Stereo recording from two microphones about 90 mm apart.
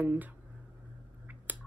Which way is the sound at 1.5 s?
20° right (ahead or behind).